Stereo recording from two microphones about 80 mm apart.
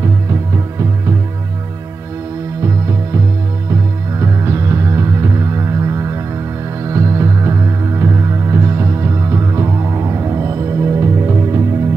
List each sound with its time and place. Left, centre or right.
0.0 s music: right
2.6 s music: right